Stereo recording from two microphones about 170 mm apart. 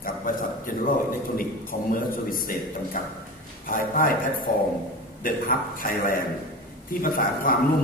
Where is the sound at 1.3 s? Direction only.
55° left (ahead or behind).